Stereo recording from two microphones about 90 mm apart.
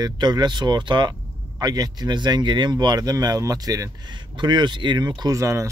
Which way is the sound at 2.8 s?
45° right (ahead or behind).